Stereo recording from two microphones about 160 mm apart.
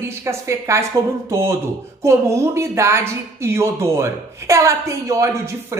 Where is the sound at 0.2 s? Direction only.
15° right (ahead or behind).